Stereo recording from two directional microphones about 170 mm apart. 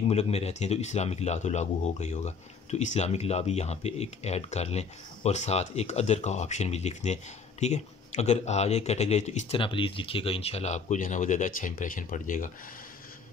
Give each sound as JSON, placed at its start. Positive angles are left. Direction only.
{"t": 0.1, "sound": "speech", "side_deg": 40}